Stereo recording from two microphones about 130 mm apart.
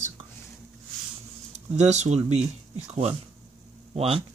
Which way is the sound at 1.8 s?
60° right (ahead or behind).